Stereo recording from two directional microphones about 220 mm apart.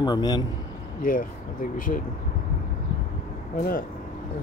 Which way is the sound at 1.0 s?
40° left (ahead or behind).